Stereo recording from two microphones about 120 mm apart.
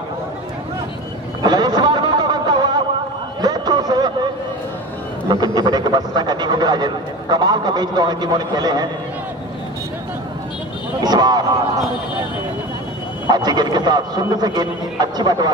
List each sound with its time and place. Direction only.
1.4 s a sound: 35° right (ahead or behind)
5.3 s speech: 35° right (ahead or behind)
11.0 s speech: 35° right (ahead or behind)
13.3 s speech: 35° right (ahead or behind)